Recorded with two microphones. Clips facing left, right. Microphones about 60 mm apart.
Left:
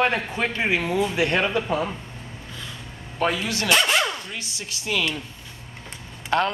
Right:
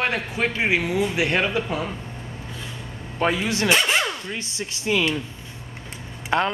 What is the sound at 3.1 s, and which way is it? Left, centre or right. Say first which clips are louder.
Speech: right 2 dB; centre.